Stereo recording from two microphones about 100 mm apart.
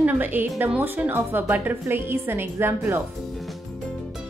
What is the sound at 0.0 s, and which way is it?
A woman's voice, 15° right (ahead or behind).